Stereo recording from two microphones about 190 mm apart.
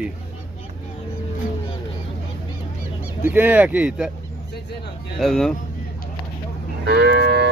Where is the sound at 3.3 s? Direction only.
10° right (ahead or behind).